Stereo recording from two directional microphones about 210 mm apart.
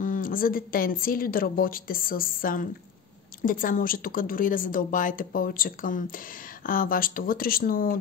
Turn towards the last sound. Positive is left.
turn(degrees=45)  # may be behind; listen again after turning